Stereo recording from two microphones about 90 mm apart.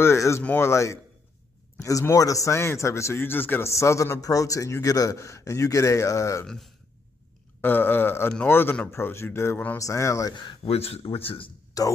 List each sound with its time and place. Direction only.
0.0 s a man's voice: 30° left (ahead or behind)
0.4 s speech: 20° left (ahead or behind)
0.7 s a man's voice: 35° left (ahead or behind)
6.4 s speech: 5° left (ahead or behind)
7.6 s speech: 20° left (ahead or behind)
9.8 s a man's voice: 35° left (ahead or behind)
10.3 s a man's voice: 60° left (ahead or behind); by 11.5 s 90° left
11.8 s a man's voice: 40° left (ahead or behind)